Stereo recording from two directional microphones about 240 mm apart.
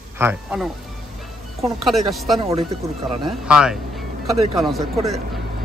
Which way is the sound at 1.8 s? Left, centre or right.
Centre.